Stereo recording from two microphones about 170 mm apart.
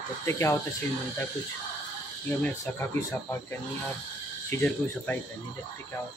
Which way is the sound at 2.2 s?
10° left (ahead or behind).